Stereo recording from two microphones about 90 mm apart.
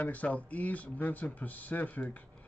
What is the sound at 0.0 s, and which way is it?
Speech, 15° left (ahead or behind).